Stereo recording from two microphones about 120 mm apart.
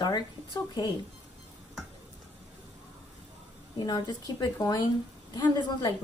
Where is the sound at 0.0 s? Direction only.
35° left (ahead or behind).